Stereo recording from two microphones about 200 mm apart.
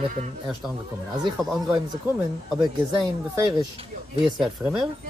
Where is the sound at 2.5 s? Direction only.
Centre (ahead or behind).